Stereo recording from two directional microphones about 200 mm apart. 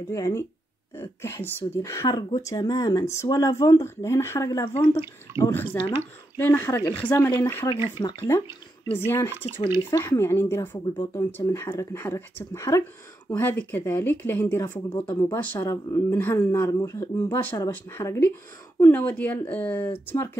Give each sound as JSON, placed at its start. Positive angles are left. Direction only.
{"t": 0.1, "sound": "speech", "side_deg": 15}
{"t": 8.9, "sound": "speech", "side_deg": 10}